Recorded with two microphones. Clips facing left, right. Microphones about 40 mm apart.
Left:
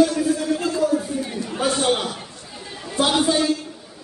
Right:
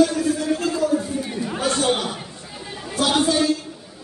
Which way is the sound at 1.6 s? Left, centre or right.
Centre.